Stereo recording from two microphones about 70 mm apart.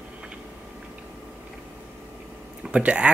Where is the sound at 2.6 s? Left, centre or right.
Centre.